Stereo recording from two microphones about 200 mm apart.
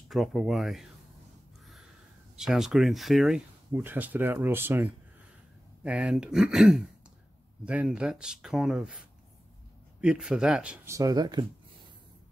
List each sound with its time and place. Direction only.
0.1 s speech: centre (ahead or behind)
2.3 s speech: centre (ahead or behind)
11.0 s speech: 20° right (ahead or behind)